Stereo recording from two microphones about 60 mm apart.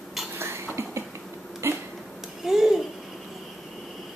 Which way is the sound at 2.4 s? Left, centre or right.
Centre.